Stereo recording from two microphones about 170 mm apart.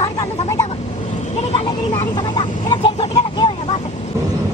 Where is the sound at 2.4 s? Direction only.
25° left (ahead or behind).